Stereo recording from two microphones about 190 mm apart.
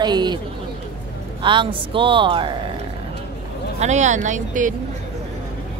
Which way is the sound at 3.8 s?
40° right (ahead or behind).